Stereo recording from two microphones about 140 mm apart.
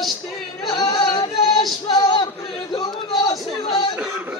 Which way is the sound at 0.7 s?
30° left (ahead or behind).